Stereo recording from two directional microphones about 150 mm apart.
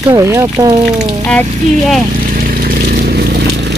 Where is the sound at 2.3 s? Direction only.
65° right (ahead or behind); by 3.8 s 90° right.